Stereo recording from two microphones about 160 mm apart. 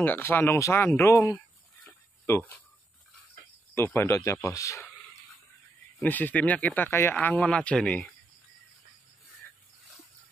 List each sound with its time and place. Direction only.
0.0 s speech: 15° left (ahead or behind)
1.9 s a sound: 15° left (ahead or behind)
3.7 s speech: 15° left (ahead or behind)
5.9 s speech: 10° left (ahead or behind)